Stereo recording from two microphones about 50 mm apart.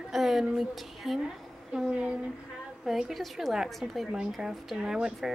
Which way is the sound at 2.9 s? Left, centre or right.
Centre.